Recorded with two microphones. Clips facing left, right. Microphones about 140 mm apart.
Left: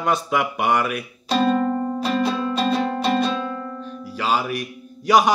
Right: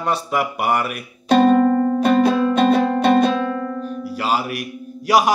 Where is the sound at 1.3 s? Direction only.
55° right (ahead or behind).